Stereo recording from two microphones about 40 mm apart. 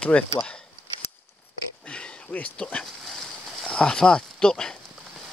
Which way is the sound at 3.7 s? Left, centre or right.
Left.